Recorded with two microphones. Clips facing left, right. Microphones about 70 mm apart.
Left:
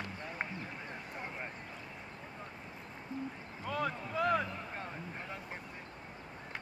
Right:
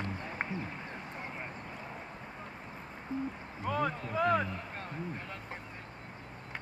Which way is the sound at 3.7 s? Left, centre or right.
Centre.